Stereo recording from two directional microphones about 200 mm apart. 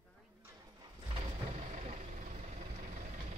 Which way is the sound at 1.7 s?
35° right (ahead or behind).